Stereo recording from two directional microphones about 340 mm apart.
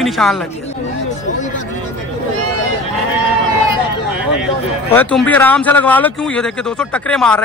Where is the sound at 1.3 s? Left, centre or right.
Left.